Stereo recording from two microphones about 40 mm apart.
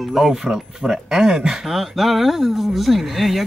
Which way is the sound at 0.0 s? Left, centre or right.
Centre.